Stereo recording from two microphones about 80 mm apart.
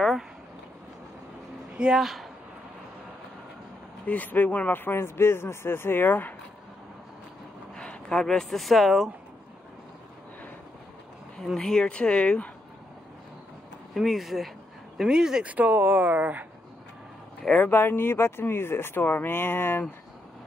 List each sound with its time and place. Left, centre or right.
1.8 s speech: centre
4.0 s speech: centre
7.7 s speech: centre
11.3 s speech: centre
13.9 s speech: centre
15.5 s speech: centre
17.4 s speech: centre
17.6 s speech: left